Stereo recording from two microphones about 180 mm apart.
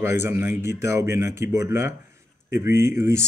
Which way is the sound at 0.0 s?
15° right (ahead or behind).